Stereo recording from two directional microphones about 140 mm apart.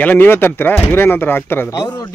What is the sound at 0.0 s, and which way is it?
A man's voice, 15° left (ahead or behind).